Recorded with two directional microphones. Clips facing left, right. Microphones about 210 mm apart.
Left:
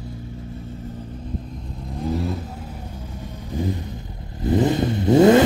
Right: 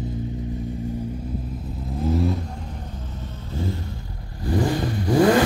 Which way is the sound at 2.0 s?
Centre (ahead or behind).